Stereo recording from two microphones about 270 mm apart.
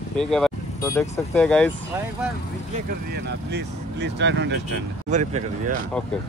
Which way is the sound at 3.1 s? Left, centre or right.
Right.